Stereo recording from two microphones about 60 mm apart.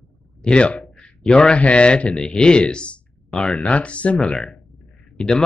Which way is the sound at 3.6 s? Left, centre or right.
Centre.